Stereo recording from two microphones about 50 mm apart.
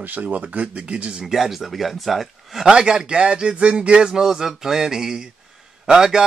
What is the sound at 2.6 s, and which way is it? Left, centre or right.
Speech, centre.